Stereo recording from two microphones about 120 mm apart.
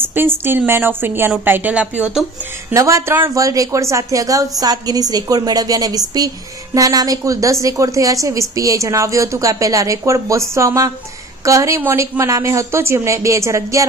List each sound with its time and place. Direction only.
0.0 s a woman's voice: 15° right (ahead or behind)
2.7 s a woman's voice: 25° right (ahead or behind)